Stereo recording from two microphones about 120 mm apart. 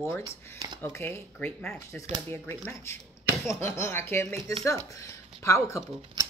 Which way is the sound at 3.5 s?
20° left (ahead or behind).